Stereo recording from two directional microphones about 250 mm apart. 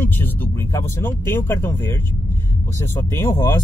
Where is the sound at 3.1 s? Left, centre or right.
Centre.